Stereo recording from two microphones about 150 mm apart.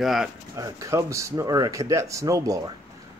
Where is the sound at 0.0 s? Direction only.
Centre (ahead or behind).